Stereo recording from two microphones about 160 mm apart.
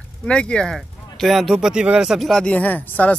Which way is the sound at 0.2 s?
5° left (ahead or behind).